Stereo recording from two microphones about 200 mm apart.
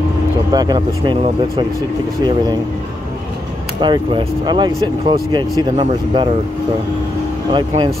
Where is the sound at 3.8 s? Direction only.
25° right (ahead or behind).